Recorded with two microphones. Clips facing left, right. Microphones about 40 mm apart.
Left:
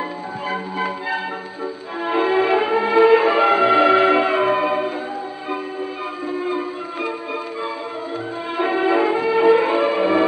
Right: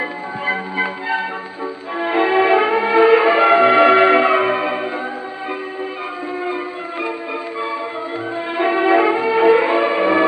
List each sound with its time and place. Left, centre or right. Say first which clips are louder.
2.0 s music: right 3 dB; right
6.4 s music: even; centre
8.5 s music: right 3 dB; right